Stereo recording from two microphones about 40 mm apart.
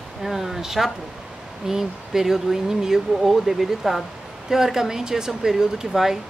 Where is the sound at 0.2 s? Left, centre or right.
Centre.